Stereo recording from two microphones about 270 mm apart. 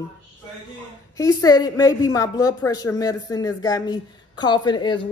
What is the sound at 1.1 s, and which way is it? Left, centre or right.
A woman's voice, centre.